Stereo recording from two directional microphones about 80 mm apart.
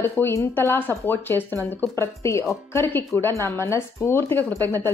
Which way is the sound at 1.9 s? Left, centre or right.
Left.